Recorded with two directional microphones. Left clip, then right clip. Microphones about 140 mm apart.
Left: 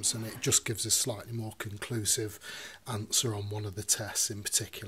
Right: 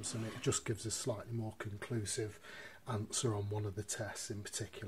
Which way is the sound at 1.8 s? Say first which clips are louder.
Left 9 dB; 45° left (ahead or behind).